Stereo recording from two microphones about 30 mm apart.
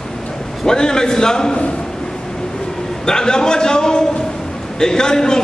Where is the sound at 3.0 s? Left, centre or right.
Left.